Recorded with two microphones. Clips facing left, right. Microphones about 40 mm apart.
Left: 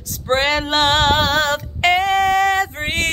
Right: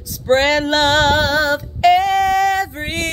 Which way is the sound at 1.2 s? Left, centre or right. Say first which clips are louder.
Right 1 dB; left.